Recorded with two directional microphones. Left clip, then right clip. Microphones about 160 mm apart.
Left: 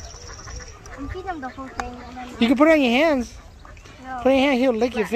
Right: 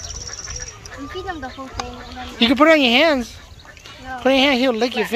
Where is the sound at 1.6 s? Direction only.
10° left (ahead or behind).